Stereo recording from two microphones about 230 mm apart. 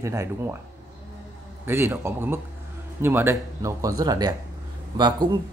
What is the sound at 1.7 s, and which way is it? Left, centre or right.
Speech, centre.